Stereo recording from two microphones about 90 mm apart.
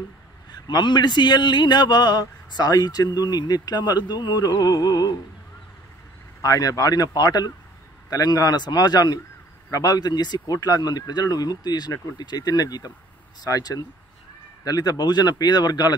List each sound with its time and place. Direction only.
0.5 s a man's voice: 55° left (ahead or behind)
6.4 s a man's voice: 40° left (ahead or behind)